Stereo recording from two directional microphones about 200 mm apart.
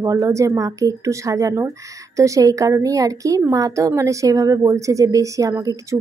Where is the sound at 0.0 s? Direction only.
15° right (ahead or behind).